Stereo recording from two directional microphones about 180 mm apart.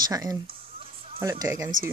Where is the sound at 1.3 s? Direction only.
20° right (ahead or behind).